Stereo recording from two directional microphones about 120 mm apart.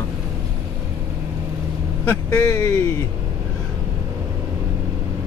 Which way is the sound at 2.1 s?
20° left (ahead or behind).